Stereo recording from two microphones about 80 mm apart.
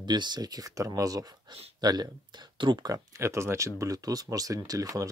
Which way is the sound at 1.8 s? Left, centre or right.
Right.